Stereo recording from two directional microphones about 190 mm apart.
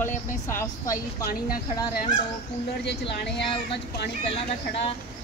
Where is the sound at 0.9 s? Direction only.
50° left (ahead or behind).